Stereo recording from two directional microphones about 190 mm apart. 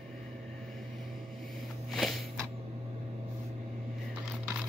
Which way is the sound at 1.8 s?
Centre (ahead or behind).